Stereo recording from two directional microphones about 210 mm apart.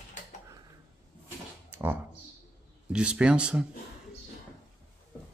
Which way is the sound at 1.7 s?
10° right (ahead or behind).